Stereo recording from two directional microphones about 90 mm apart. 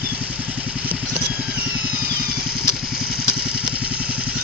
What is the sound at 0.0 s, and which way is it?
Vehicle, 15° right (ahead or behind).